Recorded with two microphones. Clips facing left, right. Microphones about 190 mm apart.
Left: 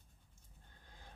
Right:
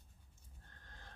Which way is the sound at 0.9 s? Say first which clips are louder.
Even; 10° left (ahead or behind).